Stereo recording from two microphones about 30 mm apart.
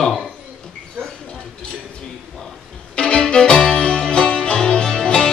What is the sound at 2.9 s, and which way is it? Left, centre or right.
Music, left.